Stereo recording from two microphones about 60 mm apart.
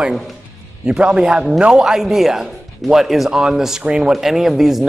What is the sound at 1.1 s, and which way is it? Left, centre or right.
A man's voice, centre.